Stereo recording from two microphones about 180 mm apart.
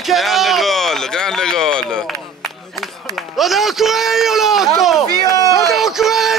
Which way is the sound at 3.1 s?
Centre (ahead or behind).